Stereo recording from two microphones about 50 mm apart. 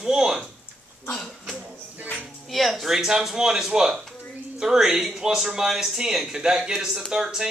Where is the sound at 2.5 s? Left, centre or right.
Centre.